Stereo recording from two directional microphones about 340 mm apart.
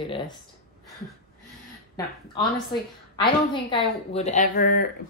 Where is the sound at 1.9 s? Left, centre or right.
Centre.